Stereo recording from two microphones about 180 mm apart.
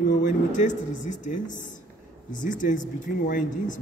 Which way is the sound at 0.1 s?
45° left (ahead or behind).